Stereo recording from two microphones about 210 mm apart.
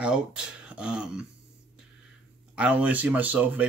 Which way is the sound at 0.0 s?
5° right (ahead or behind).